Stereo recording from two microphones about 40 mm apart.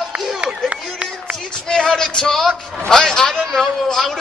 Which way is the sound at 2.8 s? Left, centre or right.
Centre.